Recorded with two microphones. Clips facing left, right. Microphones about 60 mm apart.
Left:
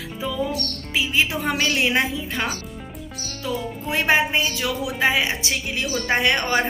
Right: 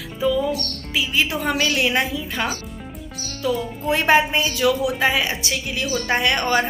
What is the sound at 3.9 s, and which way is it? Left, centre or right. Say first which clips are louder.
A woman's voice: right 3 dB; centre.